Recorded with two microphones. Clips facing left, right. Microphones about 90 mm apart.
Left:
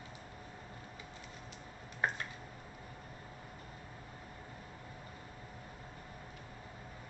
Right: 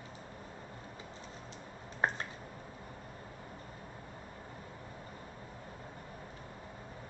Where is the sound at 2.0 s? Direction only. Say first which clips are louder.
Right 3 dB; 30° right (ahead or behind).